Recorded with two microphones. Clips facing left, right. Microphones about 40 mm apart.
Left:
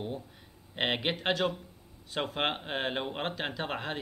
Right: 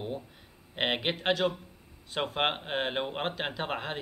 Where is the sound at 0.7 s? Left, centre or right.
Centre.